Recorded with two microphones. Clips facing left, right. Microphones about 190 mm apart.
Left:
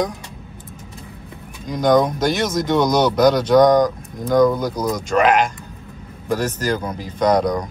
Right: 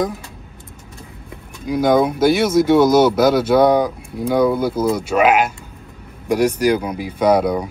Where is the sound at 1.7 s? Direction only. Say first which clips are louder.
Right 1 dB; 10° right (ahead or behind).